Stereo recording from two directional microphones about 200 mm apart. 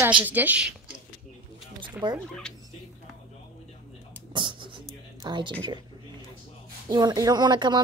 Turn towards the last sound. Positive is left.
turn(degrees=-20)  # may be behind; listen again after turning